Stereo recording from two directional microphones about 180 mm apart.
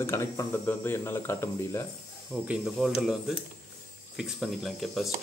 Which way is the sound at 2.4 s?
5° right (ahead or behind).